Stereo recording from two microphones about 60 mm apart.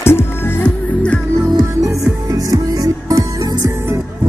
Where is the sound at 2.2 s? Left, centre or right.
Right.